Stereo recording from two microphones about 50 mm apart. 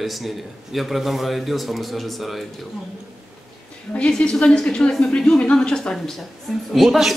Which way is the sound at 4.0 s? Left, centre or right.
Centre.